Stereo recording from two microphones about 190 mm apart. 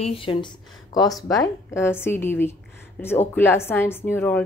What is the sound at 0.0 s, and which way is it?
Speech, 30° left (ahead or behind).